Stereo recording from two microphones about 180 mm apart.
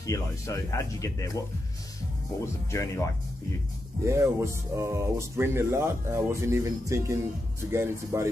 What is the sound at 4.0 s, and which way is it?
Speech, 15° right (ahead or behind).